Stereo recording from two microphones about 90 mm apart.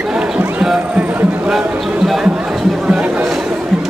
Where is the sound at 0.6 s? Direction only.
10° right (ahead or behind).